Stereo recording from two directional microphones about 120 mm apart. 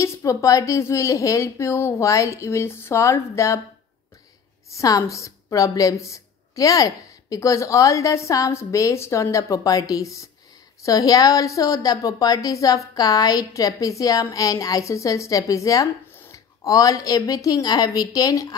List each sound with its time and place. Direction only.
0.0 s a woman's voice: 25° left (ahead or behind)
4.6 s a woman's voice: 30° left (ahead or behind)